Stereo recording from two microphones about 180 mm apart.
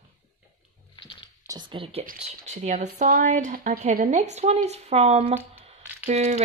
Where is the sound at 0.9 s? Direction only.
25° left (ahead or behind).